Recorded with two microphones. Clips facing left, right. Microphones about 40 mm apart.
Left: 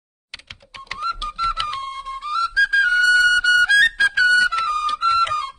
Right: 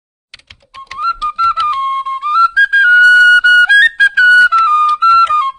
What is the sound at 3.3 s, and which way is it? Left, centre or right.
Music, right.